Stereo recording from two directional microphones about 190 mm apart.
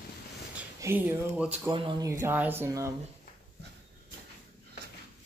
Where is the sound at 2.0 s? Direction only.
15° right (ahead or behind).